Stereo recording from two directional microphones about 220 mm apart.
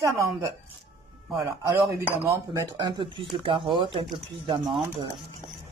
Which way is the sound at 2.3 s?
15° right (ahead or behind).